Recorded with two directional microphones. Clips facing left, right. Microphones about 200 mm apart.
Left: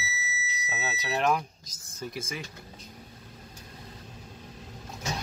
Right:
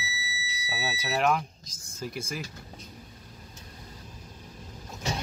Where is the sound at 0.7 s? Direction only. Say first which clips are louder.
Right 1 dB; 10° right (ahead or behind).